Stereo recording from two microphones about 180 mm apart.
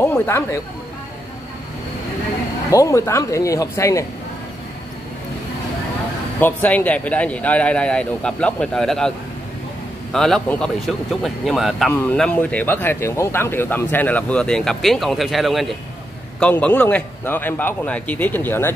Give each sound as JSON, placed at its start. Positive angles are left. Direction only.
{"t": 0.0, "sound": "speech", "side_deg": 15}
{"t": 2.7, "sound": "speech", "side_deg": 15}
{"t": 6.4, "sound": "speech", "side_deg": 10}
{"t": 10.1, "sound": "speech", "side_deg": 5}